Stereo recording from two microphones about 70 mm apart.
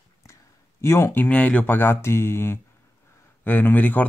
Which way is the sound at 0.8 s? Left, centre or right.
Left.